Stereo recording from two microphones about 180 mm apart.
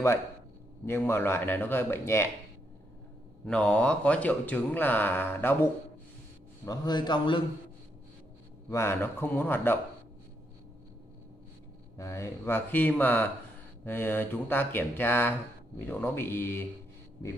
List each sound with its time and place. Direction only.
0.8 s speech: 15° left (ahead or behind)
3.4 s a man's voice: 5° left (ahead or behind); by 7.4 s 25° left (ahead or behind)
8.6 s speech: 15° left (ahead or behind)
12.0 s speech: 15° left (ahead or behind)